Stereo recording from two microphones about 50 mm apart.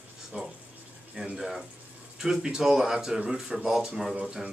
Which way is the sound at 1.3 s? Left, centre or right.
Centre.